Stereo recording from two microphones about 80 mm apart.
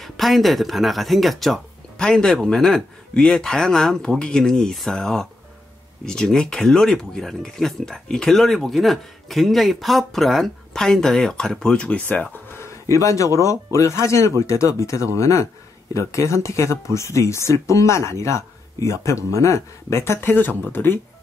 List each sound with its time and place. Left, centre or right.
0.0 s speech: centre
12.3 s speech: left